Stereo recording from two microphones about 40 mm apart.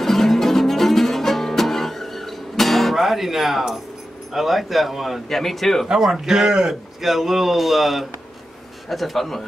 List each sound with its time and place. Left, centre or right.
0.0 s music: centre
3.0 s speech: centre
5.3 s speech: centre
5.9 s a man's voice: centre
7.0 s speech: centre